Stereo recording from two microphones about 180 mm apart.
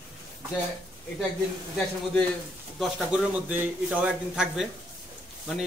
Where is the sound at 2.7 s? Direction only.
5° right (ahead or behind).